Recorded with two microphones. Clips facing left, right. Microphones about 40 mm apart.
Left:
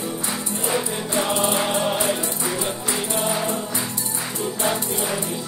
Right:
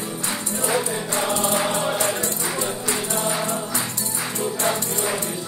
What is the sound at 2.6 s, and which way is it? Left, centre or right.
Music, left.